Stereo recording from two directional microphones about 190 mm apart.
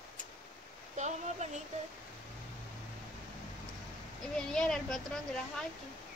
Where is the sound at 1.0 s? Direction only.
35° right (ahead or behind).